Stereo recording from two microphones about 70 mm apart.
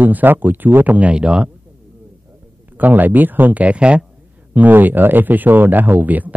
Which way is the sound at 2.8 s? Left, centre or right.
Right.